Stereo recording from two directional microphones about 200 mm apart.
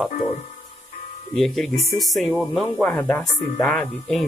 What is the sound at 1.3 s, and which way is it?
Speech, centre (ahead or behind).